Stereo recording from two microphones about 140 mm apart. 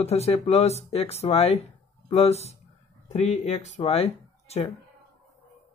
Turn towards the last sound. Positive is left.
turn(degrees=45)  # may be behind; listen again after turning